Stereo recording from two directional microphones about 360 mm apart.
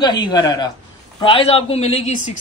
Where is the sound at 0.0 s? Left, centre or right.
Centre.